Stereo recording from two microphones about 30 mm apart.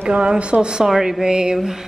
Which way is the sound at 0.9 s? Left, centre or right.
Centre.